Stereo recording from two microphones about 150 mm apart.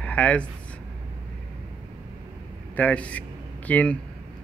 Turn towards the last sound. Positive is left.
turn(degrees=10)  # may be behind; listen again after turning